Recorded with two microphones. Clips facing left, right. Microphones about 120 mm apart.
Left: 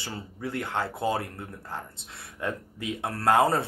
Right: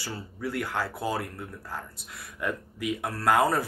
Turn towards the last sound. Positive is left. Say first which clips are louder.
# left 1 dB
turn(degrees=30)  # may be behind; listen again after turning